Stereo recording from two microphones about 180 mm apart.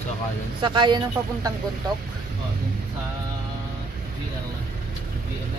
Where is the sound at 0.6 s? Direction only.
25° right (ahead or behind).